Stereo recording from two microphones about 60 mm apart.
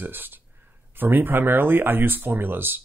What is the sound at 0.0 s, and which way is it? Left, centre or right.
Speech, right.